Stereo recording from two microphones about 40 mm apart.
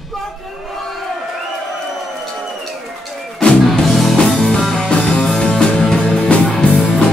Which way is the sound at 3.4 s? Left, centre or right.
Left.